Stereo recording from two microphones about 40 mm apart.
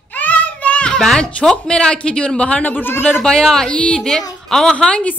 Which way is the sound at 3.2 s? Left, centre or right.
Centre.